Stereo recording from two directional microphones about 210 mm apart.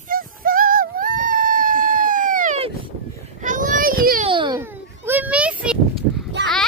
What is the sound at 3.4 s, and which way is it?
Baby cry, 40° right (ahead or behind).